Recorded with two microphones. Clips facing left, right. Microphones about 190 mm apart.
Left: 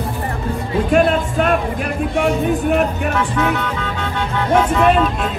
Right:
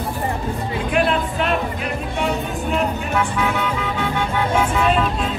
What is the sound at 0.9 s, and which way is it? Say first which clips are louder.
Speech: left 5 dB; 50° left (ahead or behind).